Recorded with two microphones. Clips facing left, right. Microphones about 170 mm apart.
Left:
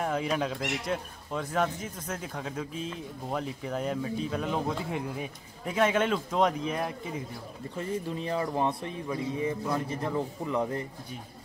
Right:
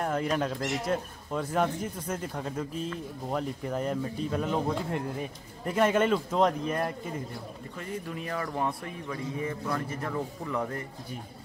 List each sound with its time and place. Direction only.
0.0 s speech: centre (ahead or behind)
7.7 s speech: 25° left (ahead or behind)